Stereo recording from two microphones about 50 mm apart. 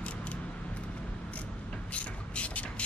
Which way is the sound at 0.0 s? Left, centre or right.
Left.